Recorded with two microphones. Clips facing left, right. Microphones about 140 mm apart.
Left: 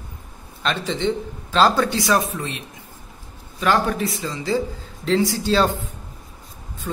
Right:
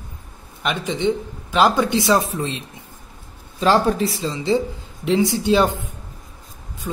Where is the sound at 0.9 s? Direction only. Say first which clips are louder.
Right 4 dB; 15° right (ahead or behind).